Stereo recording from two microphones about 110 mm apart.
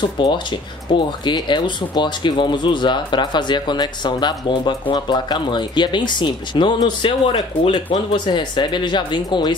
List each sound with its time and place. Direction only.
0.0 s speech: 45° left (ahead or behind)